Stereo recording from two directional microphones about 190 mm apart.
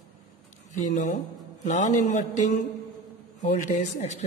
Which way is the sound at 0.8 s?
40° left (ahead or behind).